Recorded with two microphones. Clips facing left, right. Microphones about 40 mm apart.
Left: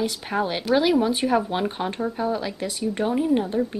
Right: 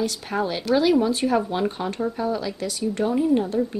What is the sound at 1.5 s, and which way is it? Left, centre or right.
Speech, left.